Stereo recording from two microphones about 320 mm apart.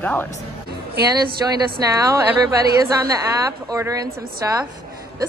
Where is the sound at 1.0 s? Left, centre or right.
Right.